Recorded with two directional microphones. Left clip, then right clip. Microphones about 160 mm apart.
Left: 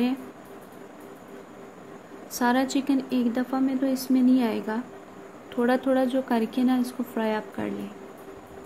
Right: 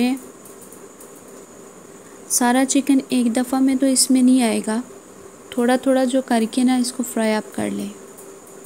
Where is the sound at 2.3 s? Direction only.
35° right (ahead or behind).